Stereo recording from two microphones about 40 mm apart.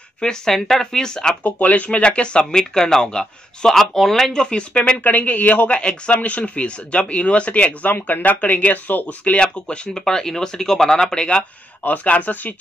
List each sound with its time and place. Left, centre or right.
0.2 s speech: centre
1.4 s speech: left
3.7 s speech: centre
4.3 s speech: left
5.0 s speech: left
7.9 s speech: left
9.0 s speech: left
10.0 s speech: centre
11.1 s speech: left
11.8 s speech: left